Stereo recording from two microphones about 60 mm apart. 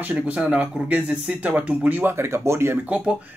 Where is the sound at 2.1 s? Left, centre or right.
Right.